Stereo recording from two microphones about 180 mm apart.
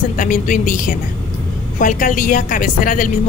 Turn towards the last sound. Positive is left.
turn(degrees=50)  # may be behind; listen again after turning